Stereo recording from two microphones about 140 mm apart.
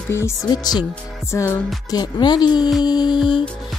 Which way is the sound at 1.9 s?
30° left (ahead or behind).